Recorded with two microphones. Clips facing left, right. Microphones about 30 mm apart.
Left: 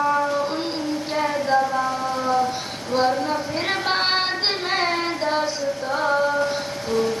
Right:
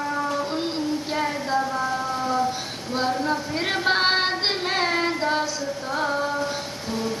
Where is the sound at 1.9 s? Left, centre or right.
Centre.